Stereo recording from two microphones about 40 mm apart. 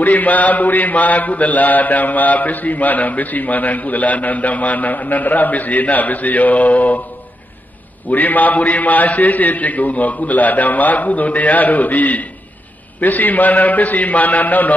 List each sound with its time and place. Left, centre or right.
0.0 s mantra: left
8.1 s mantra: left